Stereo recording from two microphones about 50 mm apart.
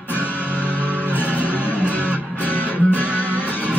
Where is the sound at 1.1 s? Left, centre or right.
Left.